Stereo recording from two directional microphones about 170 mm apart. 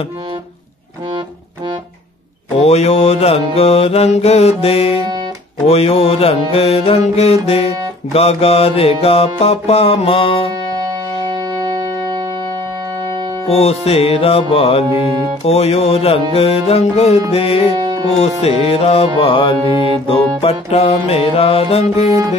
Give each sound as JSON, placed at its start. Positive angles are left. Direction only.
{"t": 2.6, "sound": "music", "side_deg": 40}
{"t": 13.5, "sound": "music", "side_deg": 40}